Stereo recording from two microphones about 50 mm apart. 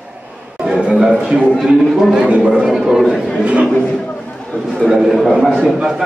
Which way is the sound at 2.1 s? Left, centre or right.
Centre.